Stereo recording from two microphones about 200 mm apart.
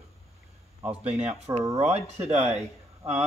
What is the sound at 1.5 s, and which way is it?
A man's voice, 20° right (ahead or behind).